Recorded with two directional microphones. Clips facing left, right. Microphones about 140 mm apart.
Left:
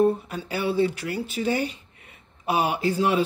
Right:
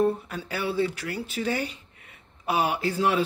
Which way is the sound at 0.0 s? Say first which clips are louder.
Left 3 dB; 20° left (ahead or behind).